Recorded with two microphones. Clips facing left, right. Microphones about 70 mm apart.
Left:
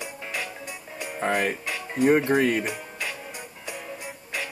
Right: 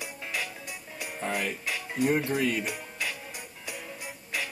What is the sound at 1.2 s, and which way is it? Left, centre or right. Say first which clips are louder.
Speech: left 6 dB; left.